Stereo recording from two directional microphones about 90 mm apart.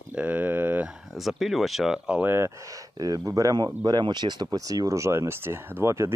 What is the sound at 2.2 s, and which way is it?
Speech, 30° right (ahead or behind).